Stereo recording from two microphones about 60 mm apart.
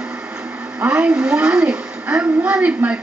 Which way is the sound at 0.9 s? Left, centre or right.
Centre.